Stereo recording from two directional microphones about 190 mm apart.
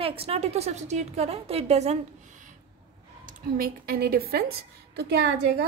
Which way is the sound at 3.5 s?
50° right (ahead or behind).